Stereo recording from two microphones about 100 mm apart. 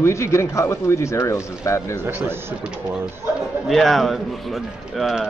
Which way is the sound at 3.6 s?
Centre (ahead or behind).